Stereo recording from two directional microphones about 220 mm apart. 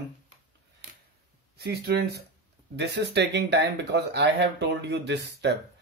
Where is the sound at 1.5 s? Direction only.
50° right (ahead or behind).